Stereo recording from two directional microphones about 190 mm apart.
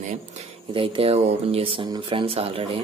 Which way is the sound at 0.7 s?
25° right (ahead or behind).